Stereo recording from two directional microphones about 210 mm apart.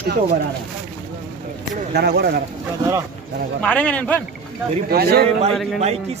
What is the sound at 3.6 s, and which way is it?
Speech, 5° left (ahead or behind).